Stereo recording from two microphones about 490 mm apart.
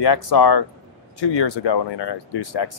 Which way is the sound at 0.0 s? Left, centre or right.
Left.